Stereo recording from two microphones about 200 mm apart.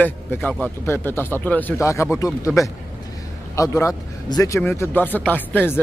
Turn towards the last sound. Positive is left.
turn(degrees=10)  # may be behind; listen again after turning